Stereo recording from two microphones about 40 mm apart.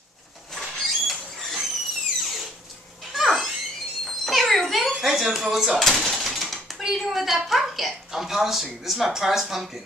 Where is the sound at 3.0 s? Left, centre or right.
Centre.